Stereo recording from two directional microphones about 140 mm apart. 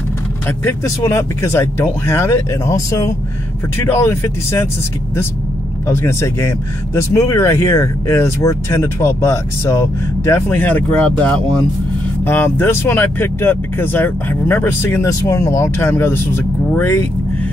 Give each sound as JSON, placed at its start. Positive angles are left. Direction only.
{"t": 0.5, "sound": "speech", "side_deg": 20}
{"t": 5.9, "sound": "speech", "side_deg": 20}